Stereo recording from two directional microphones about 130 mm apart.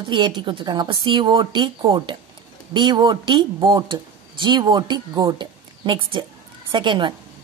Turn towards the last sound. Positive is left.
turn(degrees=-35)  # may be behind; listen again after turning